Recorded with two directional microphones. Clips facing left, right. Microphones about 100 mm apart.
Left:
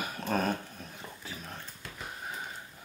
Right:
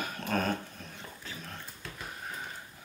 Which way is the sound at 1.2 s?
10° left (ahead or behind).